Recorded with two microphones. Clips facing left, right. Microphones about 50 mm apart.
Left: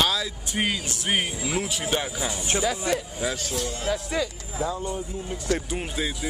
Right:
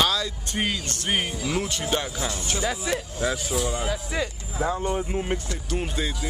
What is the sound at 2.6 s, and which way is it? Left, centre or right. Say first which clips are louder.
Speech: even; centre.